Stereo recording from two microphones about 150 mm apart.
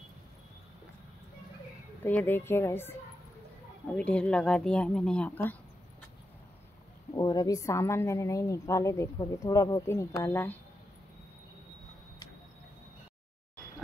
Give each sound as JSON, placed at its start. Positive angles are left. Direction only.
{"t": 2.0, "sound": "speech", "side_deg": 10}
{"t": 7.2, "sound": "a woman's voice", "side_deg": 25}